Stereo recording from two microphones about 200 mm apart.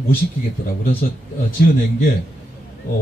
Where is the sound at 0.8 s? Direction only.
45° left (ahead or behind).